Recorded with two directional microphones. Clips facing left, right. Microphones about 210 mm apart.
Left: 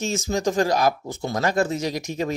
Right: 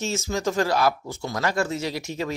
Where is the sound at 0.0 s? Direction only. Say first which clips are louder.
Left 2 dB; 15° left (ahead or behind).